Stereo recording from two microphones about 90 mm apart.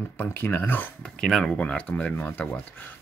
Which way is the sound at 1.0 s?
10° left (ahead or behind).